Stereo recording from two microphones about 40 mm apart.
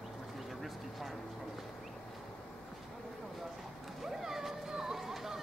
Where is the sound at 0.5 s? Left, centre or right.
Centre.